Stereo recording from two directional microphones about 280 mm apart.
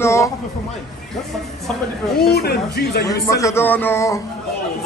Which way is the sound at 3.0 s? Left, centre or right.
Centre.